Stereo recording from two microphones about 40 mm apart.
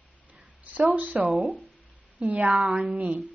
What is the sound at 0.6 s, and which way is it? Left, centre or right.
A woman's voice, right.